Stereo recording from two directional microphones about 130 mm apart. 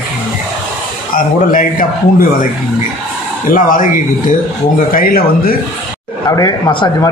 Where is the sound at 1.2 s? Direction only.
90° left.